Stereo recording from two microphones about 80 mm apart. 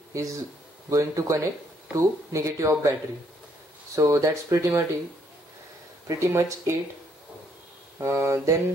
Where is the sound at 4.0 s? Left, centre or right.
Right.